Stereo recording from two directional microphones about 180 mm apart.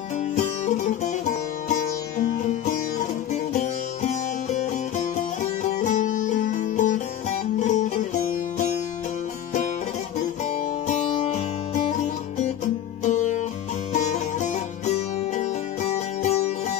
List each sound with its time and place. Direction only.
0.4 s music: 45° left (ahead or behind)
4.1 s music: 45° left (ahead or behind)
10.9 s music: 40° left (ahead or behind)
13.0 s music: 40° left (ahead or behind)